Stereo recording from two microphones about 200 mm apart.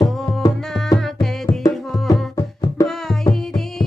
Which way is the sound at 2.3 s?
20° left (ahead or behind).